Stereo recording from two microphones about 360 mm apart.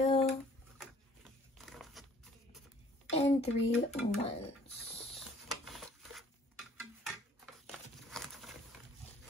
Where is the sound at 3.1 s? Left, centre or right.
Centre.